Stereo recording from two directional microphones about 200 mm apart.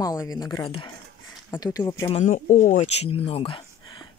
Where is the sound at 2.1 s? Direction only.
40° left (ahead or behind).